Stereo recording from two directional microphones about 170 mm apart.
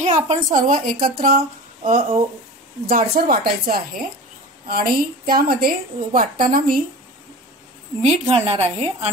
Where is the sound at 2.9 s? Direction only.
60° right (ahead or behind).